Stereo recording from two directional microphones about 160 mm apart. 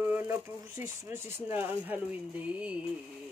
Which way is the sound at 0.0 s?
10° right (ahead or behind).